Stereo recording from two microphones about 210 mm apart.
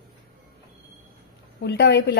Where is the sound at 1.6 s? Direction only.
55° left (ahead or behind).